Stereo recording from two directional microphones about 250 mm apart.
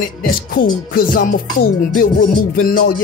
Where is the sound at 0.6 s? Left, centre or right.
Left.